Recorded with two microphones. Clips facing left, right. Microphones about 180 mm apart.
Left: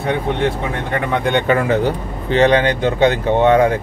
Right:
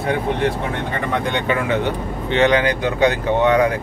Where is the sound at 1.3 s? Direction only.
45° left (ahead or behind); by 3.7 s 25° left (ahead or behind).